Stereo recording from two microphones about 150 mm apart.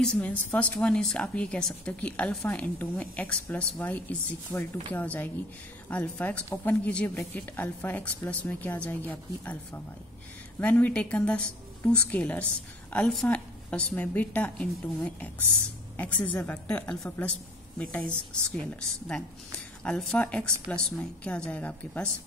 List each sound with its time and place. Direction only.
0.0 s a woman's voice: 5° left (ahead or behind)